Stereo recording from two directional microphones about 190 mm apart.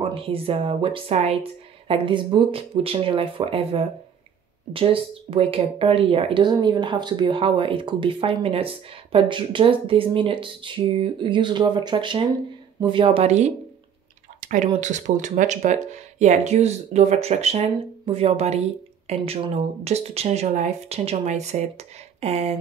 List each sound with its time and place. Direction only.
0.0 s speech: 30° right (ahead or behind)
14.4 s a sound: 40° right (ahead or behind)
14.8 s speech: 40° right (ahead or behind)